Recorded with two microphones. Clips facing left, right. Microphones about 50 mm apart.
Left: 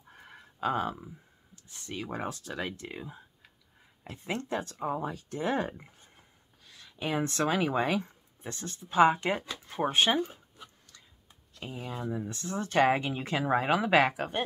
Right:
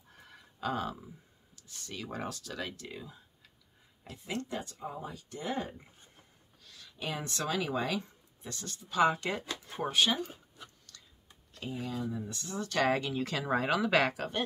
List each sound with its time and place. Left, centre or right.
0.1 s speech: left
4.5 s speech: left
6.6 s speech: left
9.5 s speech: centre
9.8 s speech: left
10.9 s tick-tock: centre
11.6 s speech: left